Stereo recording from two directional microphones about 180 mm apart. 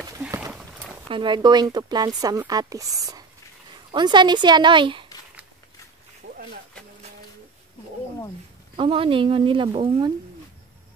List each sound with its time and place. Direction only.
0.2 s horse: 15° right (ahead or behind)
1.0 s speech: 25° right (ahead or behind)
8.7 s speech: 30° right (ahead or behind)